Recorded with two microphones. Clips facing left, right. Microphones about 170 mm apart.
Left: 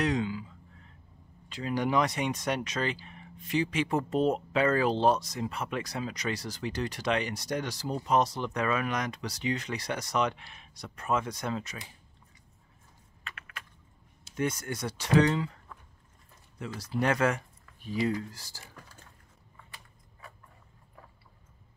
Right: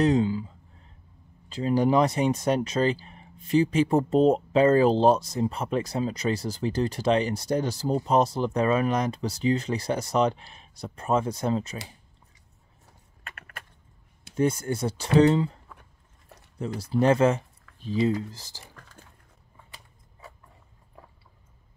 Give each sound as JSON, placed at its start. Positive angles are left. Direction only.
{"t": 0.0, "sound": "speech", "side_deg": -30}
{"t": 1.5, "sound": "speech", "side_deg": -35}
{"t": 13.2, "sound": "typing", "side_deg": -50}
{"t": 14.3, "sound": "speech", "side_deg": -30}
{"t": 15.8, "sound": "biting", "side_deg": -70}
{"t": 16.5, "sound": "speech", "side_deg": -35}